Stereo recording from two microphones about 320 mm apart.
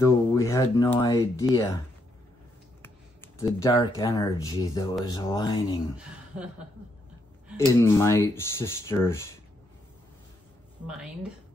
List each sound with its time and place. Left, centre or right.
0.0 s speech: centre
2.8 s speech: centre
5.9 s a woman's voice: centre
7.5 s speech: centre
10.9 s speech: centre